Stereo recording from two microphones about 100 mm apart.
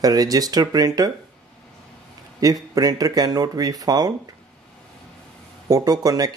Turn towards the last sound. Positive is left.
turn(degrees=-40)  # may be behind; listen again after turning